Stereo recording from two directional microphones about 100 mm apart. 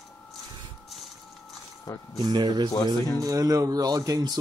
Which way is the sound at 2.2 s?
45° right (ahead or behind).